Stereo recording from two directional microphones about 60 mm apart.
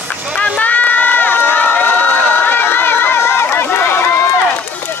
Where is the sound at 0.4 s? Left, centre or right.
Left.